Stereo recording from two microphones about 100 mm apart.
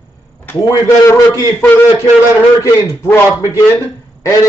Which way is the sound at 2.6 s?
35° left (ahead or behind).